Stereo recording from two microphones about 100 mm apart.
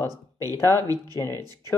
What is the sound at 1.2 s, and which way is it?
Speech, 30° left (ahead or behind).